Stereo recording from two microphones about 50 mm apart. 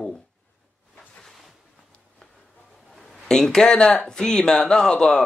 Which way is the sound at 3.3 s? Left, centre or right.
Centre.